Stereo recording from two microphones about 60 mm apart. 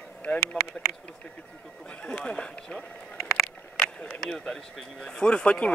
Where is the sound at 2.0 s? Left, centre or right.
Centre.